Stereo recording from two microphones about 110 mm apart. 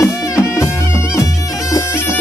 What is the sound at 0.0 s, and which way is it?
Music, 25° left (ahead or behind).